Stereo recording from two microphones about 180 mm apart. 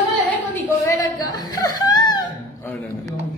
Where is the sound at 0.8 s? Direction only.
20° left (ahead or behind).